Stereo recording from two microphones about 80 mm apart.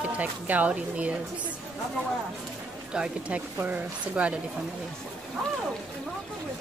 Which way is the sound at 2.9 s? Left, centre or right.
Centre.